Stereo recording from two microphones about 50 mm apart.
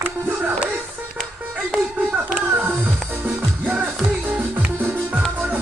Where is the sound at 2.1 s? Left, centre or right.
Right.